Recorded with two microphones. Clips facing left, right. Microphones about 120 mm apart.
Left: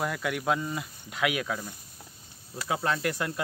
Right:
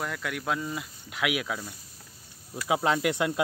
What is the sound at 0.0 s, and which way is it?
Speech, 5° left (ahead or behind).